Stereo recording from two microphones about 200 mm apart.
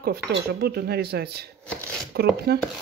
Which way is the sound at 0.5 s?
50° right (ahead or behind).